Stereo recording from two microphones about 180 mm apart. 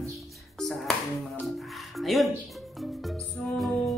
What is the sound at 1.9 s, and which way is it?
Speech, centre (ahead or behind).